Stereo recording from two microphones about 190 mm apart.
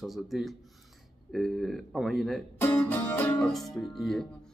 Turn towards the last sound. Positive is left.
turn(degrees=0)  # may be behind; listen again after turning